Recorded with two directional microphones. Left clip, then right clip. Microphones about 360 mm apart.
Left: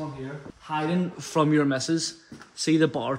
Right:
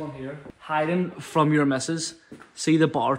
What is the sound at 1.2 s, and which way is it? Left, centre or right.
Speech, right.